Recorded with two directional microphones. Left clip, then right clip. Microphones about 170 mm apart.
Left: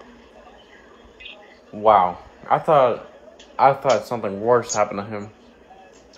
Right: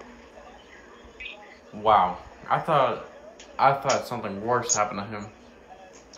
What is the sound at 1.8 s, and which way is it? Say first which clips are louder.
Speech: left 5 dB; 35° left (ahead or behind).